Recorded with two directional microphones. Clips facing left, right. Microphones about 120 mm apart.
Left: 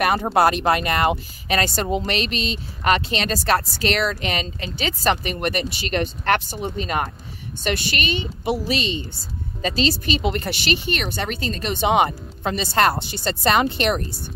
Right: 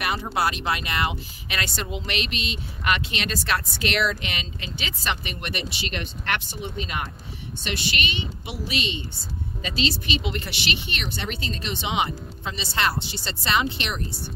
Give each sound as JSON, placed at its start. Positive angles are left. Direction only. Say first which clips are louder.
{"t": 0.0, "sound": "speech", "louder": "left 8 dB", "side_deg": 50}